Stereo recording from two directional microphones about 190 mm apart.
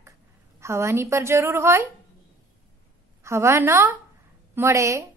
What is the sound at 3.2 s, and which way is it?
A woman's voice, 15° right (ahead or behind).